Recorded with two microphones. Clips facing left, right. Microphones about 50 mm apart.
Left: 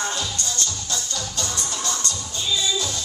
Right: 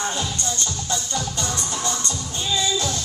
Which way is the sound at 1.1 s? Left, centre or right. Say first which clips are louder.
Right 3 dB; right.